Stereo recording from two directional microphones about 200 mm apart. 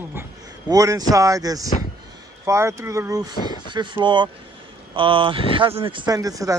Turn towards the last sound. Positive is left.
turn(degrees=-15)  # may be behind; listen again after turning